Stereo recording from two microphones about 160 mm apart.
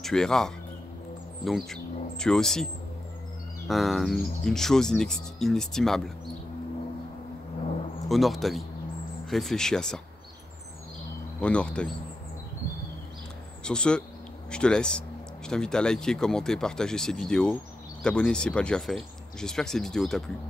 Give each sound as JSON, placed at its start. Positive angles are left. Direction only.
{"t": 0.0, "sound": "speech", "side_deg": 5}
{"t": 1.7, "sound": "speech", "side_deg": 5}
{"t": 8.1, "sound": "speech", "side_deg": 0}
{"t": 11.4, "sound": "speech", "side_deg": 5}
{"t": 13.7, "sound": "speech", "side_deg": 5}